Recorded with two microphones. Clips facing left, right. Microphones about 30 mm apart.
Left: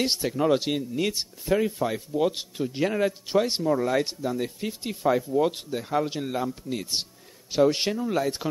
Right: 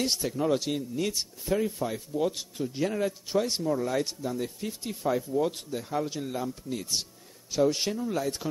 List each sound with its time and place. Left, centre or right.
0.0 s speech: left